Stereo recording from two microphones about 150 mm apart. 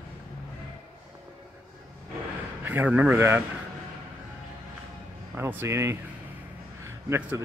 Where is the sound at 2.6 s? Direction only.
10° right (ahead or behind).